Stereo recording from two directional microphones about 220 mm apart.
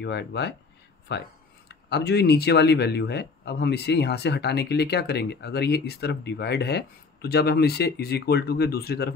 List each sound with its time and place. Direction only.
0.0 s speech: 50° left (ahead or behind)